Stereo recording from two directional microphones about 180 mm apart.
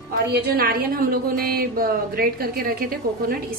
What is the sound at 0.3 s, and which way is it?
A woman's voice, 55° right (ahead or behind).